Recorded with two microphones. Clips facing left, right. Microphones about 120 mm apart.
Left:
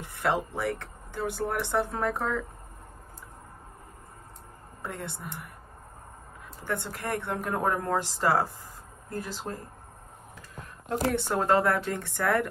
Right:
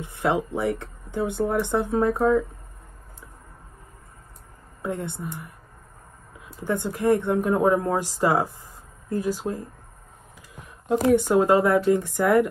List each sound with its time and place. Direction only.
0.0 s speech: 20° right (ahead or behind)
4.8 s speech: 20° right (ahead or behind)
6.6 s a woman's voice: 15° right (ahead or behind)